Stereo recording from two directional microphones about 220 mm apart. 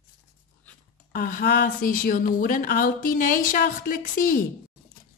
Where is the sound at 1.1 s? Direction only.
40° left (ahead or behind).